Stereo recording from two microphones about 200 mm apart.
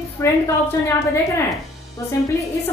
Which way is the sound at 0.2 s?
15° left (ahead or behind).